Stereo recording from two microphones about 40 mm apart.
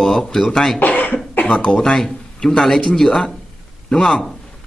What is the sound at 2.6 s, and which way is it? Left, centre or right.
A man's voice, centre.